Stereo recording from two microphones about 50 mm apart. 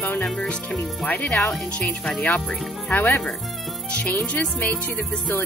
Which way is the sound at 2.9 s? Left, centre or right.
Left.